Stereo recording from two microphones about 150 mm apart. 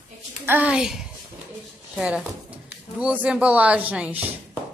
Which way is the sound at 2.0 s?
5° right (ahead or behind).